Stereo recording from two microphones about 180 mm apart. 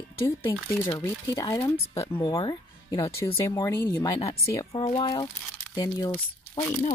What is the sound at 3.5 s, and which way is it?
Speech, 15° left (ahead or behind).